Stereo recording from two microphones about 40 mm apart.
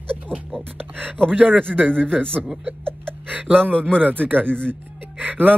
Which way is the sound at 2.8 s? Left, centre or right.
Right.